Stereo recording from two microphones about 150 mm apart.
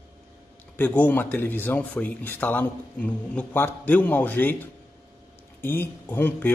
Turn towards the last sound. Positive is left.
turn(degrees=15)  # may be behind; listen again after turning